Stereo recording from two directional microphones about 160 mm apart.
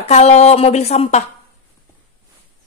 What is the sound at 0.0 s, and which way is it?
Speech, 40° left (ahead or behind).